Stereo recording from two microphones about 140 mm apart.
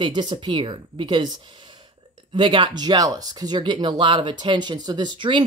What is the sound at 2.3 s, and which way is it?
Speech, 35° right (ahead or behind).